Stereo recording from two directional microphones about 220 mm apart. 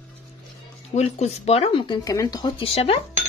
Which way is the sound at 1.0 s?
30° left (ahead or behind).